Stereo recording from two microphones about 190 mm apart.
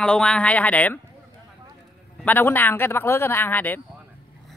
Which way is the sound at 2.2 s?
10° left (ahead or behind).